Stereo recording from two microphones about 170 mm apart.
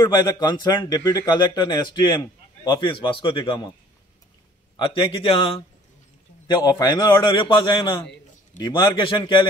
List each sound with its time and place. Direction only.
0.0 s a man's voice: 25° left (ahead or behind)
4.7 s a man's voice: 30° left (ahead or behind)